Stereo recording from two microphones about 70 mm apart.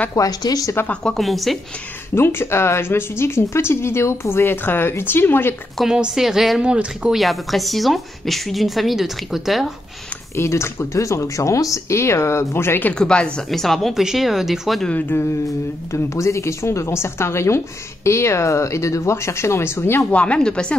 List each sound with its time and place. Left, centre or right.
0.1 s speech: left
1.0 s a woman's voice: centre
2.1 s speech: left
6.1 s a woman's voice: centre
6.6 s speech: centre
7.2 s a woman's voice: centre
10.3 s speech: left
12.9 s speech: centre
13.5 s a woman's voice: centre
14.9 s speech: left
15.1 s a woman's voice: left
20.1 s speech: centre